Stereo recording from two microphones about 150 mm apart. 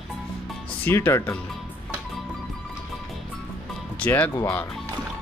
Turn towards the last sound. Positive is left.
turn(degrees=10)  # may be behind; listen again after turning